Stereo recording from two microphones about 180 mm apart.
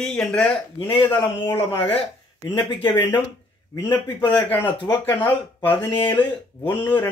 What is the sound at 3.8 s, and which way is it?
A man's voice, 25° left (ahead or behind).